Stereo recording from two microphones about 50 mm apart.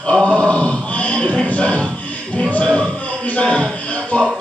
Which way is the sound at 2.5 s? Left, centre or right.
Left.